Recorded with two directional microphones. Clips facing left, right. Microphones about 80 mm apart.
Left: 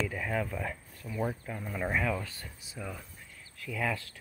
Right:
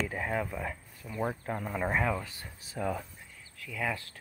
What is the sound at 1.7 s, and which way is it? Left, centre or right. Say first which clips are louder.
Speech: right 1 dB; right.